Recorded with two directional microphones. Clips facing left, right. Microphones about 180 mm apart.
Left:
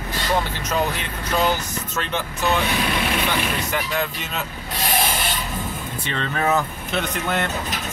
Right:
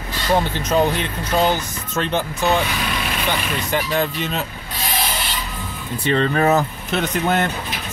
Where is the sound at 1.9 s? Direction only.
35° right (ahead or behind).